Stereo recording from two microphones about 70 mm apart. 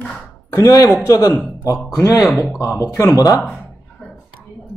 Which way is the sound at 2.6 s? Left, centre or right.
Left.